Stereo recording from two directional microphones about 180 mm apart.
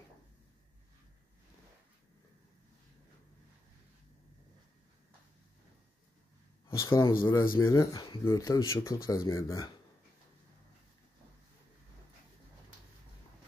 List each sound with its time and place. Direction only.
6.7 s speech: 20° left (ahead or behind)